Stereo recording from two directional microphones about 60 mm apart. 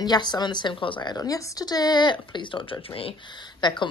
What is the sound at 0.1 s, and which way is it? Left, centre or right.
Speech, left.